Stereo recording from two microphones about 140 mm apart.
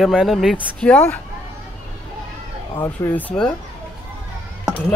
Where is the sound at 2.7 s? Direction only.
15° left (ahead or behind).